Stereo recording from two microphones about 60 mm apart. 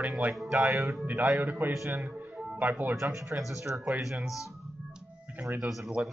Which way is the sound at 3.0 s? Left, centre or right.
Right.